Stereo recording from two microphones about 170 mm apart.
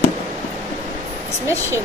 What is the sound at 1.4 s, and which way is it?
Speech, 15° right (ahead or behind).